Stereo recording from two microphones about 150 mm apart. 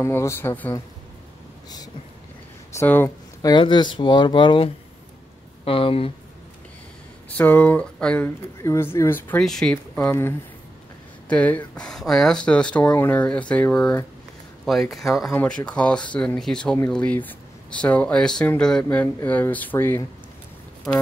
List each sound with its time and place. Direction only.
0.0 s speech: 15° left (ahead or behind)
2.7 s speech: 15° left (ahead or behind)
3.4 s speech: 30° left (ahead or behind)
5.7 s speech: 35° left (ahead or behind)
7.2 s speech: 10° left (ahead or behind)
8.6 s speech: 20° left (ahead or behind)
9.4 s speech: centre (ahead or behind)
11.2 s speech: 10° left (ahead or behind)